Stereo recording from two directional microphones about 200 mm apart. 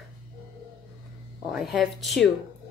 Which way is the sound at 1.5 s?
Centre (ahead or behind).